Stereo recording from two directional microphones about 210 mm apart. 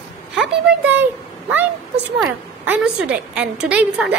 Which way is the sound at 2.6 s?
10° right (ahead or behind).